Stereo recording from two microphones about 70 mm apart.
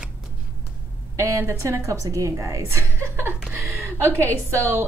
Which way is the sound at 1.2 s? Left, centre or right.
Right.